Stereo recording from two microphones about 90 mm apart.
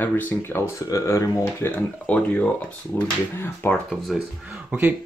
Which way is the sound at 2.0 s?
15° left (ahead or behind).